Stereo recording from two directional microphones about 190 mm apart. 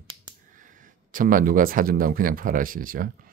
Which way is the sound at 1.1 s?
45° right (ahead or behind).